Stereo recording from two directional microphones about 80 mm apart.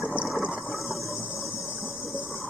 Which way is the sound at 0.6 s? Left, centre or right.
Centre.